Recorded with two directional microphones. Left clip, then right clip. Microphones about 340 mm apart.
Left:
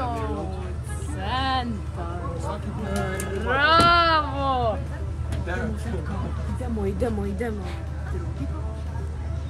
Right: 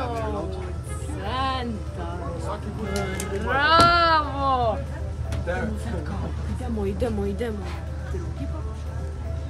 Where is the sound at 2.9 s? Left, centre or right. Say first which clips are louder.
Even; centre.